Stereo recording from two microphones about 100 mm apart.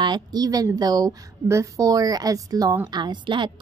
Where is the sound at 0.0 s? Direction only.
45° right (ahead or behind).